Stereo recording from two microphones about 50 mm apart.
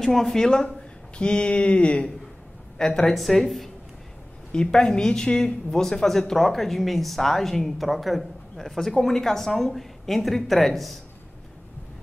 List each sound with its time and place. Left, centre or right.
0.0 s speech: centre; by 2.1 s left
2.8 s speech: centre
4.5 s speech: centre